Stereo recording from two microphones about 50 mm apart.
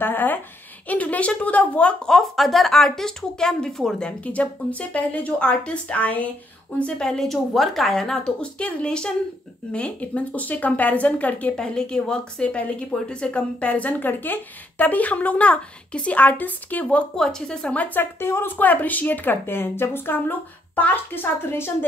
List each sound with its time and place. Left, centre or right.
0.0 s speech: left
0.8 s speech: left
2.0 s speech: centre
4.2 s speech: left
7.0 s speech: centre; by 11.5 s left
11.5 s speech: centre; by 16.8 s left
16.8 s speech: centre
17.7 s speech: left
18.2 s speech: left
18.6 s speech: left